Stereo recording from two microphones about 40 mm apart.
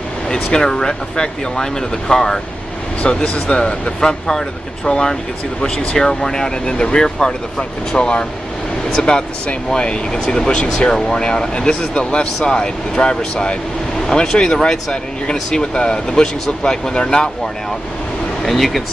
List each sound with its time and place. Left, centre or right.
0.3 s speech: centre
3.1 s speech: left
18.4 s speech: centre